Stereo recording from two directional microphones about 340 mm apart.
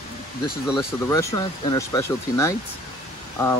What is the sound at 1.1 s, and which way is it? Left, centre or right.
Speech, centre.